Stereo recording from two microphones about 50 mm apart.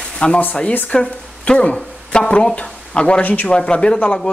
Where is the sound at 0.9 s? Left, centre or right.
Left.